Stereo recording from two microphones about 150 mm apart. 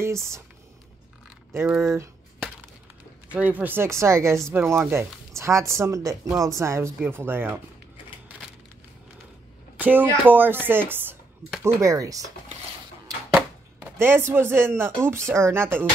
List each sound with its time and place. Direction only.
0.0 s speech: 20° right (ahead or behind)
1.8 s speech: 20° right (ahead or behind)
3.3 s speech: 10° right (ahead or behind)
9.8 s speech: 10° right (ahead or behind)
13.7 s a man's voice: 15° right (ahead or behind)